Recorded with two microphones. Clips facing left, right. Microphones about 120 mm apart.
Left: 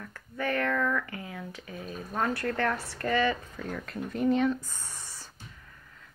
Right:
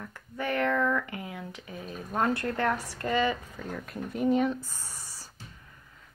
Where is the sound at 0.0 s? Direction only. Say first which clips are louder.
Left 1 dB; 15° right (ahead or behind).